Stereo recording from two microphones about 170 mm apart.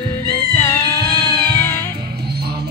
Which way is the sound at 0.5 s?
15° left (ahead or behind).